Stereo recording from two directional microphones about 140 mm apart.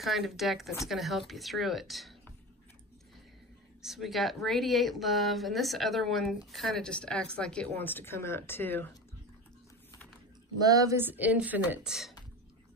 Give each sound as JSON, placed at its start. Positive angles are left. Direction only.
{"t": 0.0, "sound": "speech", "side_deg": 0}
{"t": 3.8, "sound": "speech", "side_deg": 0}
{"t": 10.6, "sound": "speech", "side_deg": -25}